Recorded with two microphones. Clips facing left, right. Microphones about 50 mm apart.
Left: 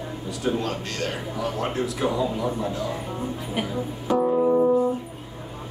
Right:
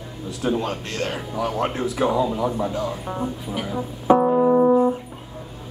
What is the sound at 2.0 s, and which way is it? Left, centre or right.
Speech, centre.